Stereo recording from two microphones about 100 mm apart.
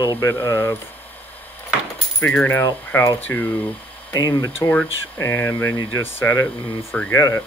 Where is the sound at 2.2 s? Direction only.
15° left (ahead or behind).